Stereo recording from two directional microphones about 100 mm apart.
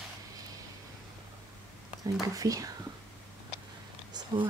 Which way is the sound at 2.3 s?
35° right (ahead or behind).